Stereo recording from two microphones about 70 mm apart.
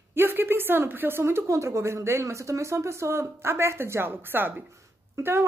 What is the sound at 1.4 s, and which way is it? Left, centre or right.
A woman's voice, right.